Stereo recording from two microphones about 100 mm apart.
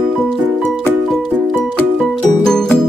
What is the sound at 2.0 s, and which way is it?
Music, centre (ahead or behind).